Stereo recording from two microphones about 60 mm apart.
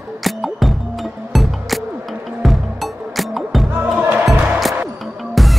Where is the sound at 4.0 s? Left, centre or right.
Right.